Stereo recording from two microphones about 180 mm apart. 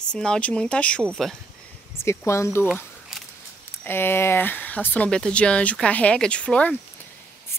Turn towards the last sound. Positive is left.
turn(degrees=5)  # may be behind; listen again after turning